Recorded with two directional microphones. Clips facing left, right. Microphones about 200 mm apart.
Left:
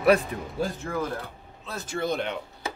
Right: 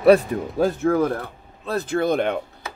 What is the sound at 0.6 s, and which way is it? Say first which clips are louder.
Speech: right 10 dB; 65° right (ahead or behind).